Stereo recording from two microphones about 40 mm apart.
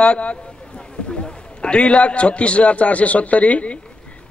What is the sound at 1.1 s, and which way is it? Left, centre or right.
A man's voice, left.